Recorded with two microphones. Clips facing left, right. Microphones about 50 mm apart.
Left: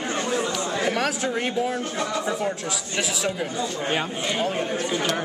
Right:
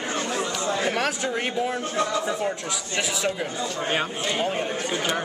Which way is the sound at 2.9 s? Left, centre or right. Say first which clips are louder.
Right 1 dB; centre.